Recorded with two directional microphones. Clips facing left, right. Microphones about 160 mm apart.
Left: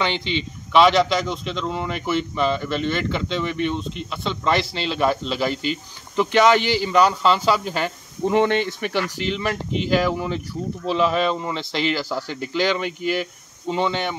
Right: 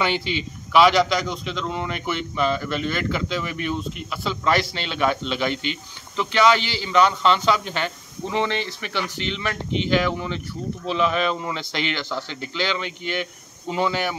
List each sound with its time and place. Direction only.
0.0 s a man's voice: 10° right (ahead or behind)
5.6 s speech: 45° left (ahead or behind)
7.0 s a man's voice: 5° left (ahead or behind)
8.3 s speech: 50° left (ahead or behind)
10.1 s a man's voice: 5° left (ahead or behind)
12.3 s speech: 45° left (ahead or behind)
13.0 s speech: 5° left (ahead or behind)